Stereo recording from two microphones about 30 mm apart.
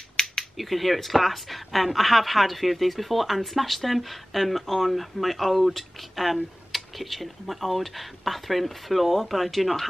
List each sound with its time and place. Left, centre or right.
0.2 s finger snapping: centre
0.6 s speech: centre